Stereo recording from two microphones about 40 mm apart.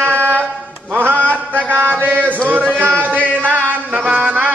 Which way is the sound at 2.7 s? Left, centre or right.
Right.